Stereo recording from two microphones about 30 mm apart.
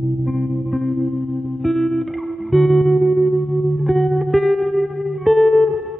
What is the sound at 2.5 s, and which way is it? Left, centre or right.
Music, centre.